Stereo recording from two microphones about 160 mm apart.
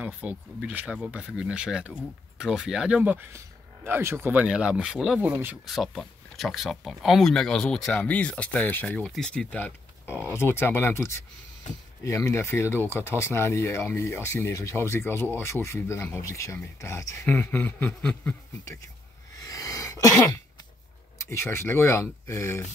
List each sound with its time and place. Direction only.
0.0 s speech: 10° right (ahead or behind); by 18.9 s 15° left (ahead or behind)
19.3 s sneeze: 20° left (ahead or behind)
21.3 s speech: 15° left (ahead or behind)